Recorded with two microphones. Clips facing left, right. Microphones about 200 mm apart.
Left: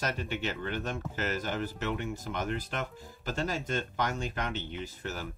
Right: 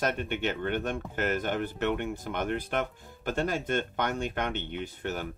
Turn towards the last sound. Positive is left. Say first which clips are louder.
# right 4 dB
turn(degrees=-60)  # may be behind; listen again after turning